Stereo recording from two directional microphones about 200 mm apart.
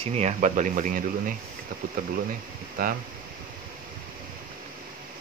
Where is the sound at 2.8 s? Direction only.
45° right (ahead or behind).